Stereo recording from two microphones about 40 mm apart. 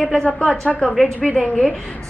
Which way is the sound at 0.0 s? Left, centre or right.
Left.